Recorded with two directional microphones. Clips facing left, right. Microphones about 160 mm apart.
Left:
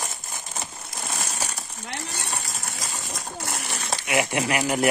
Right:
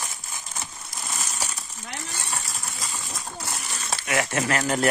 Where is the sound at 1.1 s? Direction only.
60° left (ahead or behind).